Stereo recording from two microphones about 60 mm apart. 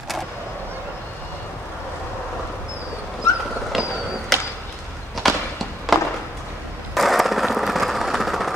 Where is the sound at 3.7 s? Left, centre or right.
Centre.